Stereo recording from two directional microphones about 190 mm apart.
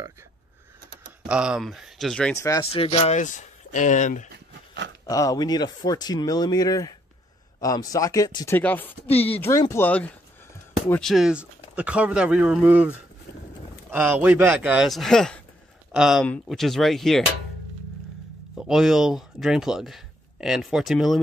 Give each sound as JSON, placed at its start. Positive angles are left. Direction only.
{"t": 1.3, "sound": "speech", "side_deg": -5}
{"t": 2.3, "sound": "speech", "side_deg": 15}
{"t": 2.6, "sound": "speech", "side_deg": 30}
{"t": 5.0, "sound": "speech", "side_deg": 20}
{"t": 8.5, "sound": "speech", "side_deg": 10}
{"t": 18.7, "sound": "speech", "side_deg": 0}